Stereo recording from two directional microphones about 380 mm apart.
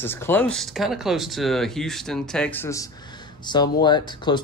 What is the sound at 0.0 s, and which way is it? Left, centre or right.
Speech, centre.